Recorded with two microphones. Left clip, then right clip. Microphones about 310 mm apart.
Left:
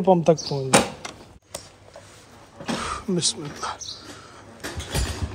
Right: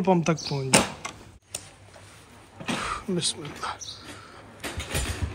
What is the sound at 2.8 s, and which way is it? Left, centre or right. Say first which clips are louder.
Speech: left 4 dB; centre.